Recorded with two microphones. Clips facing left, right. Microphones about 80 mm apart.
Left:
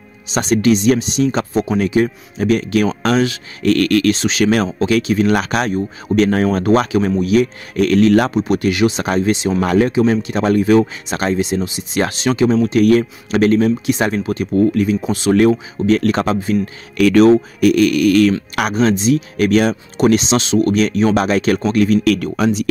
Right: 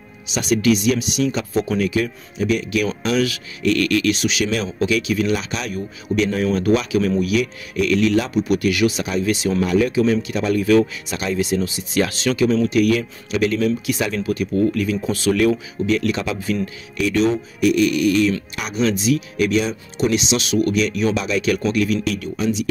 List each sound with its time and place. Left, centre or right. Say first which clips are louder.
0.3 s speech: left 3 dB; left
4.1 s speech: left 5 dB; left
5.3 s speech: left 7 dB; left
5.7 s speech: left 6 dB; left
6.1 s speech: left 5 dB; left
8.4 s speech: left 3 dB; left
9.6 s speech: left 3 dB; left
9.8 s speech: left 3 dB; left
12.3 s speech: left 5 dB; left
15.3 s speech: left 8 dB; left
16.9 s speech: left 9 dB; left
18.8 s speech: left 3 dB; left
19.4 s speech: left 6 dB; left
22.0 s speech: left 7 dB; left